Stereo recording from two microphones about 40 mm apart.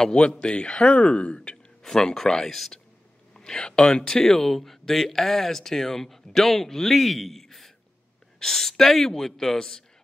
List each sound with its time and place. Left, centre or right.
0.0 s speech: left
2.1 s speech: centre
2.5 s speech: centre
3.3 s speech: centre